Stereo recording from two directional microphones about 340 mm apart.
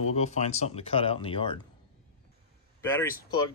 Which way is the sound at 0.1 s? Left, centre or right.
Centre.